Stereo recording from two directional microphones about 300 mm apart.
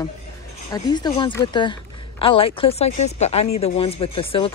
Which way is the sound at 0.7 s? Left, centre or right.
Centre.